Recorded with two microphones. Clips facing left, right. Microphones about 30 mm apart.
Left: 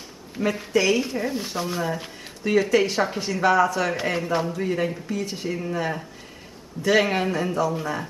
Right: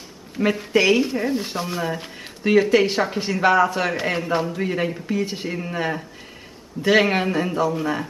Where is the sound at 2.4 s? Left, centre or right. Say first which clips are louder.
Right 3 dB; right.